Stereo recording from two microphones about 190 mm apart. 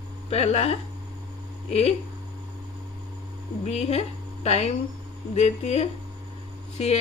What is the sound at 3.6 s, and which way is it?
A woman's voice, 35° left (ahead or behind).